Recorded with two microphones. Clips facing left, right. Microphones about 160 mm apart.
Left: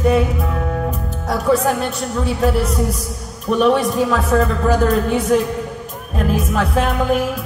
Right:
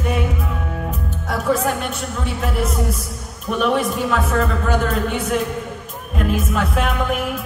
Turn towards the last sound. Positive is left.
turn(degrees=35)  # may be behind; listen again after turning